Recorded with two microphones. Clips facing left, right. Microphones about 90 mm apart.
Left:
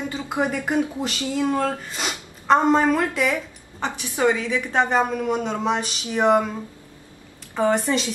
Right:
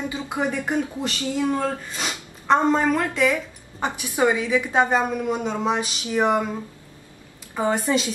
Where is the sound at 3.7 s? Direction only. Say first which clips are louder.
Right 2 dB; 15° right (ahead or behind).